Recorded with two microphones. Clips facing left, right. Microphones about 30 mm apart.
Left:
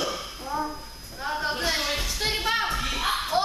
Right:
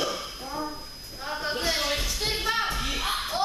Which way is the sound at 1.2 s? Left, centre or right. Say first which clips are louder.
Left 2 dB; centre.